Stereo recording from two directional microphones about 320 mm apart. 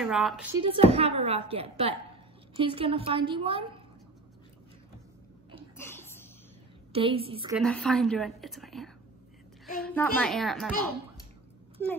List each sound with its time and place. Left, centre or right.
0.0 s speech: centre
0.6 s a woman's voice: centre
5.8 s a sound: centre
6.9 s a woman's voice: centre
7.5 s a woman's voice: centre
11.8 s a woman's voice: centre